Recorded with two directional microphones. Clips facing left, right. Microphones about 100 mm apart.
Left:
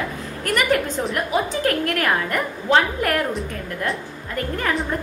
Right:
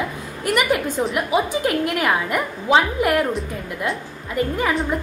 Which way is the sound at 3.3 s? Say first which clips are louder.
Right 1 dB; centre (ahead or behind).